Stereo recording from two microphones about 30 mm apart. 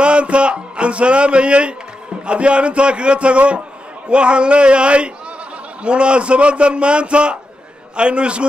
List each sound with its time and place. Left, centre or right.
0.0 s a man's voice: right